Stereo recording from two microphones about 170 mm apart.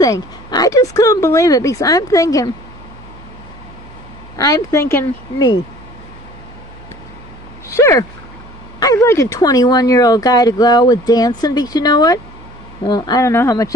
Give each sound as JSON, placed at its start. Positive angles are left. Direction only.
{"t": 0.0, "sound": "speech", "side_deg": 20}
{"t": 4.4, "sound": "speech", "side_deg": 20}
{"t": 7.6, "sound": "speech", "side_deg": 15}